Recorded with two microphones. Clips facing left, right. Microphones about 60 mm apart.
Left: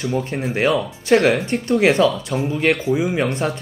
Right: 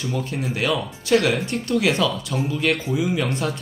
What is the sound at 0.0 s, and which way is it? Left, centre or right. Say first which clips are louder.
Speech: left 4 dB; left.